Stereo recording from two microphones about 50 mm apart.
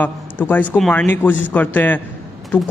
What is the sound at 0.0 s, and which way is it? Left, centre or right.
A man's voice, left.